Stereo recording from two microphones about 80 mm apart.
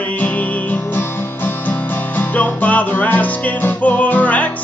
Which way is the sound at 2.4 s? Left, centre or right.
Centre.